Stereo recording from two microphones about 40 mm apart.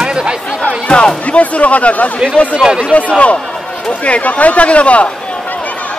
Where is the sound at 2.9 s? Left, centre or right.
Left.